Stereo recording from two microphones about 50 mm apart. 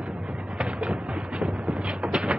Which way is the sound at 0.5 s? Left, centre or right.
Right.